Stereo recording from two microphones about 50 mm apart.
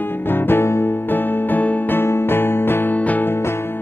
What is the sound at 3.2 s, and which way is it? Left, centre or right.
Music, left.